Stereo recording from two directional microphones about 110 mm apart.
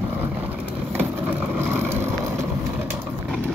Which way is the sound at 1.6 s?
15° right (ahead or behind).